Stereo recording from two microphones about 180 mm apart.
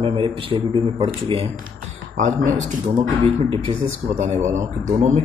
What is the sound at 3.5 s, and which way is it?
Speech, 30° right (ahead or behind).